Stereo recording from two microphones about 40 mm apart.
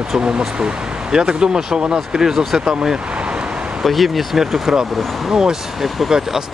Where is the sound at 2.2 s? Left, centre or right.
Centre.